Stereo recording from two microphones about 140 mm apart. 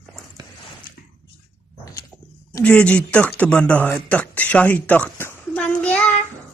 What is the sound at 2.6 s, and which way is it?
Speech, 10° left (ahead or behind).